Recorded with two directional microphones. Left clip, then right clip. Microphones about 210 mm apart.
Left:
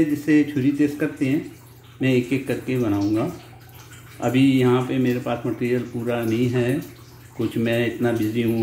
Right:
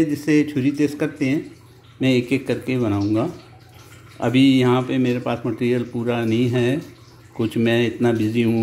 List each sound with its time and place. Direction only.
0.2 s speech: 35° right (ahead or behind)